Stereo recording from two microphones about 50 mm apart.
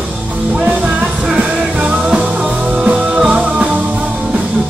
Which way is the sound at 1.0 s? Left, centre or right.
Centre.